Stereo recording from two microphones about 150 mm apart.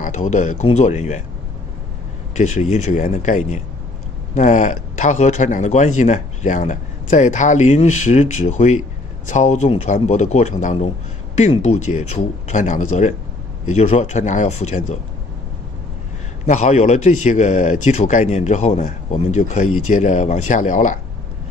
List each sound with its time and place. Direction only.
0.0 s speech: 55° left (ahead or behind)
2.3 s speech: 50° left (ahead or behind)
16.4 s speech: 50° left (ahead or behind)